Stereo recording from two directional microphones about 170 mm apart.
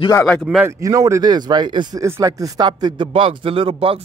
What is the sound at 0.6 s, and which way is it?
A man's voice, 15° right (ahead or behind).